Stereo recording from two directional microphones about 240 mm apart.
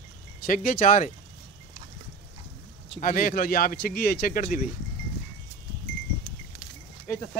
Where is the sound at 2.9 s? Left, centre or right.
Left.